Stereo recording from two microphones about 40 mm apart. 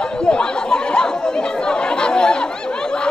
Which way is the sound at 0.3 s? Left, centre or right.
Left.